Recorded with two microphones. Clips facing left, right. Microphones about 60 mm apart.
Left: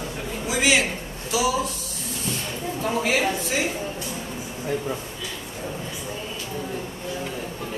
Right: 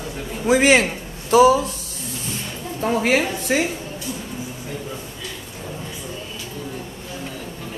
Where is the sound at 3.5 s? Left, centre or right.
Right.